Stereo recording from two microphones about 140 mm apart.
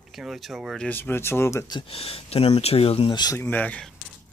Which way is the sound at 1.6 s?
35° left (ahead or behind).